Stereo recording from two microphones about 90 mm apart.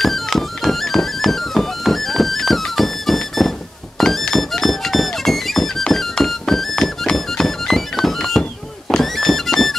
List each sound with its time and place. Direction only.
0.0 s music: centre (ahead or behind)